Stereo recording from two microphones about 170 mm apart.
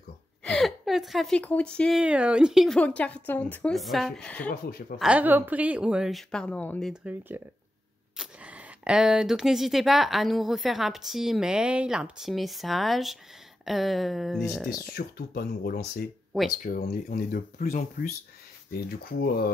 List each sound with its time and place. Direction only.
0.4 s speech: 5° left (ahead or behind)
4.5 s speech: 60° left (ahead or behind)
4.9 s speech: 5° right (ahead or behind)
6.9 s speech: 10° right (ahead or behind)
14.7 s speech: 65° left (ahead or behind)
16.4 s speech: 55° left (ahead or behind)
18.7 s speech: 65° left (ahead or behind)